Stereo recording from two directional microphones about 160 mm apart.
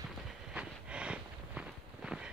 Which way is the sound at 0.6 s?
5° right (ahead or behind).